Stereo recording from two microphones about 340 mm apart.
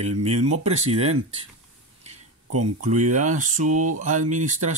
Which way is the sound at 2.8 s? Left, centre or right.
Right.